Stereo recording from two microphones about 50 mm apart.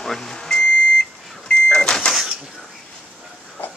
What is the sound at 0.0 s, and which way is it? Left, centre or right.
Vehicle, centre.